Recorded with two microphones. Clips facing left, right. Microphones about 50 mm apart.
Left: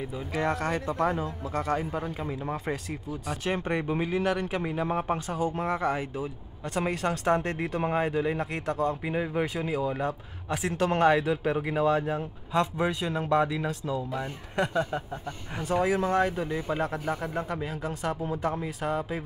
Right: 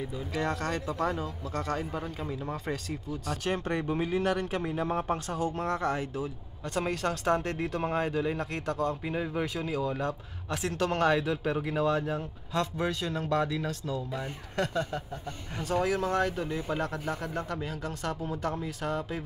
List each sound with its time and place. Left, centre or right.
0.0 s speech: centre